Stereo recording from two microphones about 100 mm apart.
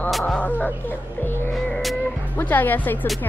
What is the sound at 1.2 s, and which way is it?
Speech, 25° left (ahead or behind).